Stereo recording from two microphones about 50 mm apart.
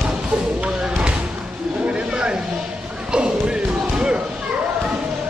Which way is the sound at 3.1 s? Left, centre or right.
Centre.